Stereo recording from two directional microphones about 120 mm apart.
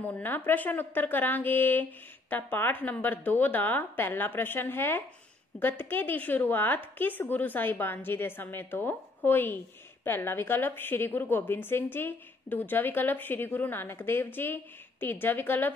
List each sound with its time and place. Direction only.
0.0 s a woman's voice: 15° left (ahead or behind)